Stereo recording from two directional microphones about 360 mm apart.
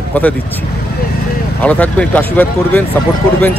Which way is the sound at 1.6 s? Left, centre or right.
Centre.